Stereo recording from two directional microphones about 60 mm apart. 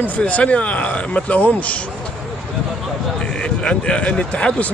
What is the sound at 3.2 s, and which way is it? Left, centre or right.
Speech, centre.